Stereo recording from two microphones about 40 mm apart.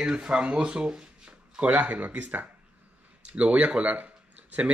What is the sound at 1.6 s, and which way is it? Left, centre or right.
Speech, right.